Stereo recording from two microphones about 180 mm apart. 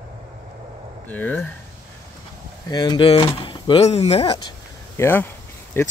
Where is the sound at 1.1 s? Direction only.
10° left (ahead or behind).